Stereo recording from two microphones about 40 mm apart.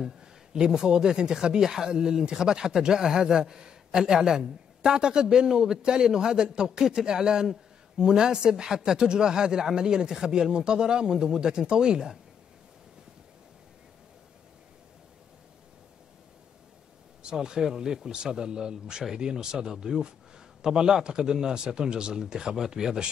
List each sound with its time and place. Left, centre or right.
0.5 s a man's voice: centre
17.2 s a man's voice: centre